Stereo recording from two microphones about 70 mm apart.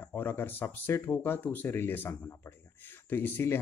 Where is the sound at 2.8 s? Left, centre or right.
Left.